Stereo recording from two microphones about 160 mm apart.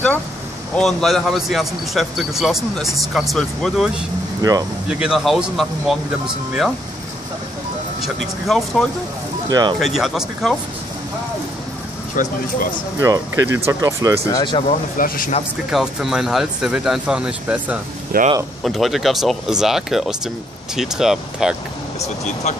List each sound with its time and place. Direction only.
0.7 s speech: centre (ahead or behind)
4.4 s speech: 25° right (ahead or behind)
4.8 s speech: 5° right (ahead or behind)
8.5 s speech: centre (ahead or behind)
9.5 s speech: 25° right (ahead or behind)
9.8 s speech: centre (ahead or behind)
12.2 s speech: 55° left (ahead or behind)
13.0 s speech: 20° right (ahead or behind)
14.2 s speech: 25° left (ahead or behind)
15.0 s speech: 60° left (ahead or behind)
15.7 s speech: centre (ahead or behind)
18.1 s speech: 65° right (ahead or behind)
18.6 s speech: centre (ahead or behind)
22.0 s speech: 45° left (ahead or behind)